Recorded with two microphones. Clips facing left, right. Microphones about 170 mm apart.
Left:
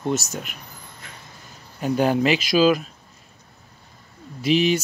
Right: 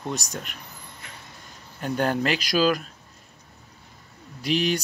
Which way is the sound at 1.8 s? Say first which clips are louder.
Left 5 dB; 10° left (ahead or behind).